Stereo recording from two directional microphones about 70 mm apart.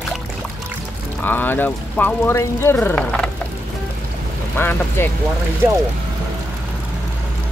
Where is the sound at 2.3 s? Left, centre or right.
Left.